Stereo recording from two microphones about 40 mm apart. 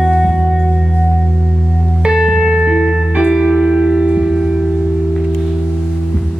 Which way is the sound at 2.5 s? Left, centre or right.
Right.